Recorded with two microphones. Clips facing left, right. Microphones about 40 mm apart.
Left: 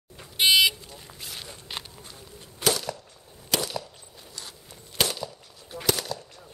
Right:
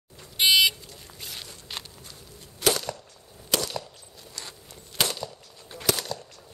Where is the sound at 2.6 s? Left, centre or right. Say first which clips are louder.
Right 1 dB; centre.